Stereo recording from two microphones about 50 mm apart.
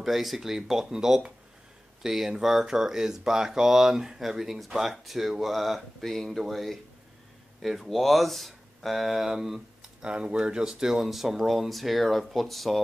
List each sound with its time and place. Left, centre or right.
0.0 s speech: centre
10.0 s speech: right; by 12.8 s centre